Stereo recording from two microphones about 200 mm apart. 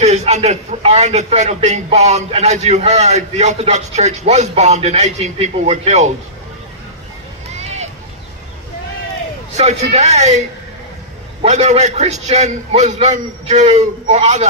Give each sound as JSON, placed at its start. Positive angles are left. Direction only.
{"t": 0.0, "sound": "a man's voice", "side_deg": -35}
{"t": 9.6, "sound": "a man's voice", "side_deg": -35}
{"t": 11.4, "sound": "a man's voice", "side_deg": -35}